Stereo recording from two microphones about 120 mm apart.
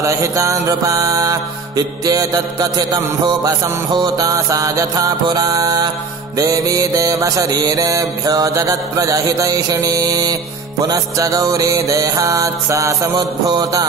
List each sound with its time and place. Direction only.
0.0 s music: 25° right (ahead or behind)